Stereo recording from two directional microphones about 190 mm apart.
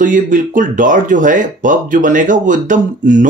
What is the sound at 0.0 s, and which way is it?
Speech, 45° right (ahead or behind).